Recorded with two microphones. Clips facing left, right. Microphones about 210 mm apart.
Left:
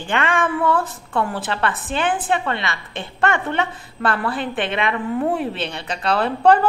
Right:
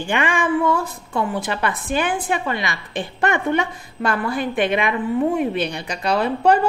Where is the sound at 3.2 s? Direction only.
15° right (ahead or behind).